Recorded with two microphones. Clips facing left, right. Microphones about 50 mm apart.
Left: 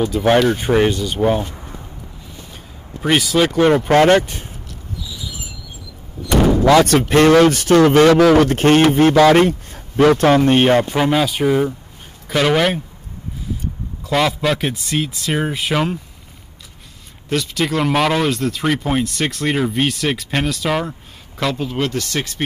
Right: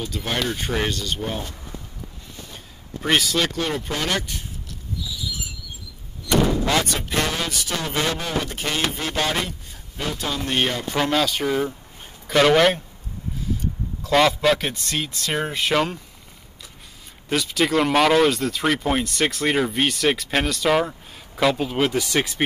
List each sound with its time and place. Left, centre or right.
0.2 s speech: left
0.7 s speech: centre
3.0 s speech: centre
3.6 s speech: left
7.0 s speech: left
7.8 s a man's voice: left
10.9 s speech: centre
14.0 s speech: centre
17.3 s speech: centre